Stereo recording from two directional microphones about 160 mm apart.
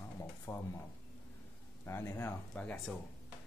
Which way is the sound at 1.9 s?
15° left (ahead or behind).